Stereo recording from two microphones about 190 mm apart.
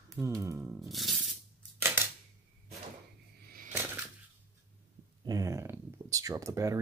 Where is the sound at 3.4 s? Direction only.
50° right (ahead or behind).